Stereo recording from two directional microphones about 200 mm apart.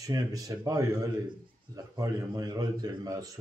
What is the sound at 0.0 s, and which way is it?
A man's voice, 15° right (ahead or behind).